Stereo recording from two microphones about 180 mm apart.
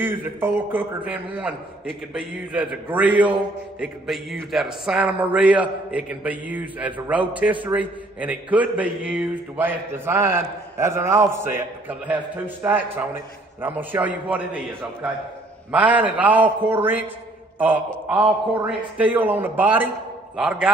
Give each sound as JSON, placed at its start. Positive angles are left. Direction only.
{"t": 0.0, "sound": "a man's voice", "side_deg": -10}